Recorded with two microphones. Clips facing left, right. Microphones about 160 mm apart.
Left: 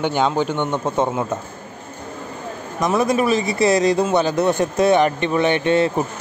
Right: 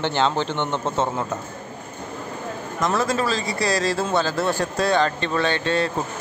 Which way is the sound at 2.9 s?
20° left (ahead or behind).